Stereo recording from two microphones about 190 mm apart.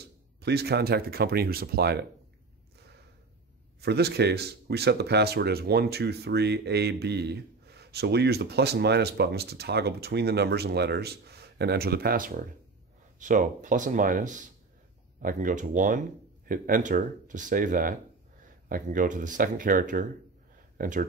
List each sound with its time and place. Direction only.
0.0 s speech: 60° right (ahead or behind)
3.8 s speech: 60° right (ahead or behind)